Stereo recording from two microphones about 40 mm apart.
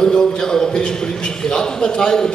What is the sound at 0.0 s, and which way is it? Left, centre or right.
A man's voice, centre.